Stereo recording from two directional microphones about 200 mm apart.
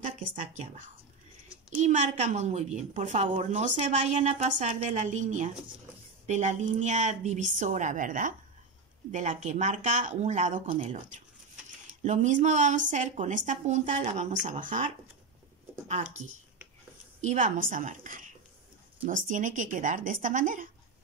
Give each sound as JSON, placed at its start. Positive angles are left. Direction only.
{"t": 0.4, "sound": "a woman's voice", "side_deg": -35}
{"t": 12.0, "sound": "a woman's voice", "side_deg": -40}